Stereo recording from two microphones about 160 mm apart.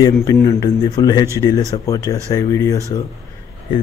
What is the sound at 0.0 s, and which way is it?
A man's voice, 20° left (ahead or behind).